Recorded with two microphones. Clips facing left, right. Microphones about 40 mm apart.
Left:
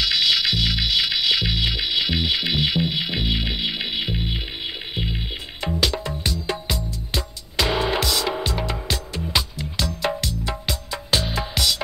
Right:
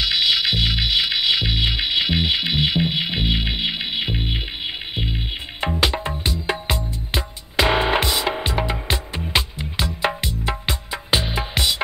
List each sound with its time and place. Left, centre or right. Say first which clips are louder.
0.0 s music: right 1 dB; centre
4.9 s music: left 1 dB; centre
5.6 s music: right 2 dB; right